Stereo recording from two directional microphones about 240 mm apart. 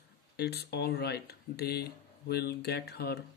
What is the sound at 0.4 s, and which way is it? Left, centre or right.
Speech, left.